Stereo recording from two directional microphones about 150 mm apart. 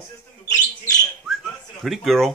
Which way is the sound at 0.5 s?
25° left (ahead or behind).